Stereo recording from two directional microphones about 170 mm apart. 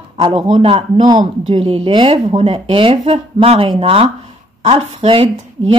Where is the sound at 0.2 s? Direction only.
30° right (ahead or behind).